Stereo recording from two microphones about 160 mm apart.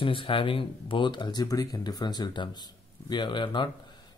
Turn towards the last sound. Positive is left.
turn(degrees=30)  # may be behind; listen again after turning